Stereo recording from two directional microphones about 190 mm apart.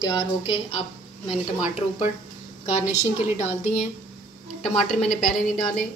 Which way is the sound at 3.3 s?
35° left (ahead or behind).